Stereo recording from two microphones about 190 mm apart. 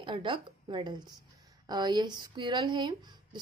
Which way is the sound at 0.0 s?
25° right (ahead or behind).